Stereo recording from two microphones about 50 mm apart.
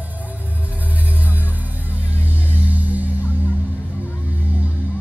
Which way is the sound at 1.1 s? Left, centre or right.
Right.